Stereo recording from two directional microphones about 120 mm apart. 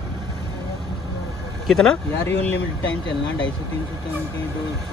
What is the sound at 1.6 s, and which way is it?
Speech, 5° left (ahead or behind).